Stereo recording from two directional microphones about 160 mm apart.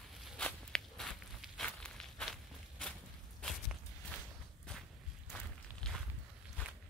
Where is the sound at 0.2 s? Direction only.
5° left (ahead or behind).